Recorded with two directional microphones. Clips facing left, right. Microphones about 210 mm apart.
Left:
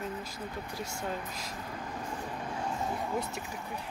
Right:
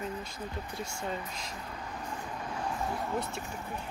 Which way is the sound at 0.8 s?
5° left (ahead or behind).